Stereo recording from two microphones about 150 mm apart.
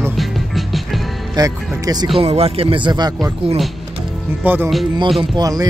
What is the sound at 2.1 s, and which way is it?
Speech, 40° right (ahead or behind).